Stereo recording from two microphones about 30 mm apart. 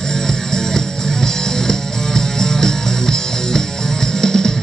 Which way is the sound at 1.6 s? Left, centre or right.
Centre.